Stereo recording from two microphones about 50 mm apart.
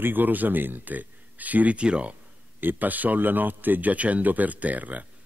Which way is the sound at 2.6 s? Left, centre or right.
Right.